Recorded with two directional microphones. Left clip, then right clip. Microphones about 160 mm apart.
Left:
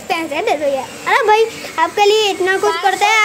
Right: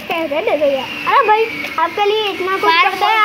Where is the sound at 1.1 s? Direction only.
45° left (ahead or behind).